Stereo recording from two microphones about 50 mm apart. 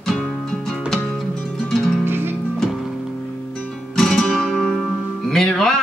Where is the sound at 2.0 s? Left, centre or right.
Right.